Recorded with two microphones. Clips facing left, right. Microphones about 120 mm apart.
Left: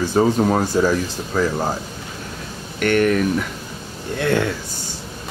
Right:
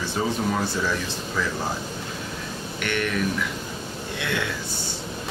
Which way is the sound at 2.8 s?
45° left (ahead or behind).